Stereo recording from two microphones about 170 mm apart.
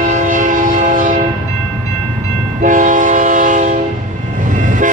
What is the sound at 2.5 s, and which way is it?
Train, 50° right (ahead or behind).